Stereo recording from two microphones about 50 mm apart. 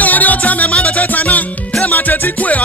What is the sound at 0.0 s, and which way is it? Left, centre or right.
Music, left.